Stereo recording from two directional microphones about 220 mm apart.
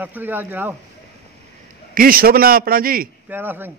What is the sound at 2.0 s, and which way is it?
A man's voice, 40° right (ahead or behind).